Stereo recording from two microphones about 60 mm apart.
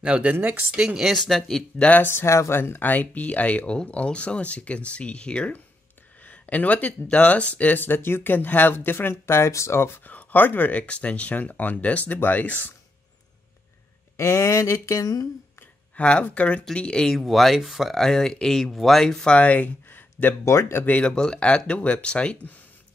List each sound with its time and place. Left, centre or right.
0.0 s speech: right
1.0 s speech: centre
1.8 s speech: left
2.0 s speech: left
2.9 s speech: left
10.0 s speech: left
14.1 s a sound: left
16.0 s speech: centre
17.2 s speech: centre; by 20.3 s left
20.4 s speech: left
21.0 s speech: centre